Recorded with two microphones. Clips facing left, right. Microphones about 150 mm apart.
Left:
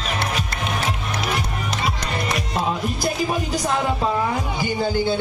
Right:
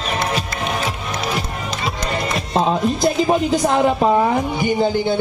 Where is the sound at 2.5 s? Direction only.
25° right (ahead or behind).